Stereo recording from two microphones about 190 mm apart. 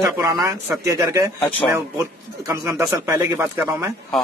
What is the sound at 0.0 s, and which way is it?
Speech, 15° right (ahead or behind).